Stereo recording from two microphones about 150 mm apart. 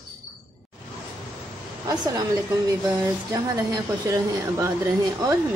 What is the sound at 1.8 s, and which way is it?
A woman's voice, 25° right (ahead or behind).